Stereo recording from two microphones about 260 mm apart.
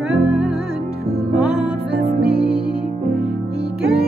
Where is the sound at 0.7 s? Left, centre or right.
Right.